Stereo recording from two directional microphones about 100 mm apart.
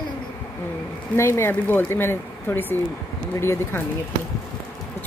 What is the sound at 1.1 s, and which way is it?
Speech, 25° left (ahead or behind).